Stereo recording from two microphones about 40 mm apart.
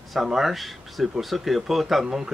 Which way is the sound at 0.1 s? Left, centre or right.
Centre.